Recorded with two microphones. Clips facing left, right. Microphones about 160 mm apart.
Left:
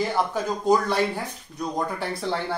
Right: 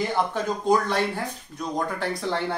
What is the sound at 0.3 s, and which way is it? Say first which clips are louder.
Speech: left 1 dB; 10° left (ahead or behind).